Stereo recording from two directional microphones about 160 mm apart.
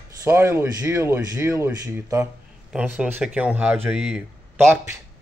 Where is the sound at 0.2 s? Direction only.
15° right (ahead or behind).